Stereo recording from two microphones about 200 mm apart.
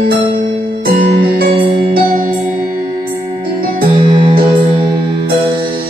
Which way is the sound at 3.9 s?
25° right (ahead or behind).